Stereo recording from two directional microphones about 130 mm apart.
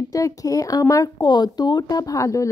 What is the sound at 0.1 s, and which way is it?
Speech, 25° left (ahead or behind).